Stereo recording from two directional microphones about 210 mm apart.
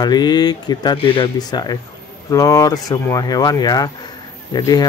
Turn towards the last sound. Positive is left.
turn(degrees=15)  # may be behind; listen again after turning